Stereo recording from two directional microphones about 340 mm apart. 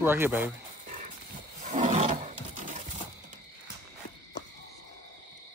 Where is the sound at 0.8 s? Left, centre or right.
Right.